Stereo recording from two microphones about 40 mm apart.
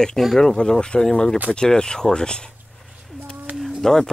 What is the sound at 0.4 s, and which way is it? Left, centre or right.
Speech, centre.